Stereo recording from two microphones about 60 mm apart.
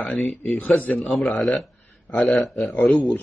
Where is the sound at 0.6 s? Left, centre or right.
Left.